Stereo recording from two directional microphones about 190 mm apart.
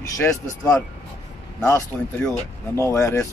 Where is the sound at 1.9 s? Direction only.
5° left (ahead or behind).